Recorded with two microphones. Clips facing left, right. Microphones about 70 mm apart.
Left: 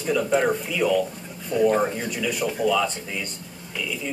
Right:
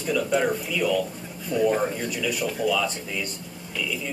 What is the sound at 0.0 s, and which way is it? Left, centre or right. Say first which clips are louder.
Speech: left 2 dB; centre.